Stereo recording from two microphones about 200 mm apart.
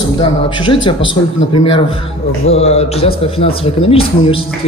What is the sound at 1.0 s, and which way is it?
Speech, 75° left (ahead or behind).